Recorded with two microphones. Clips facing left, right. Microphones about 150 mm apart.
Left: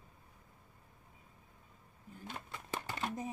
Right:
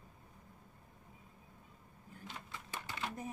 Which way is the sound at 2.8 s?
50° left (ahead or behind).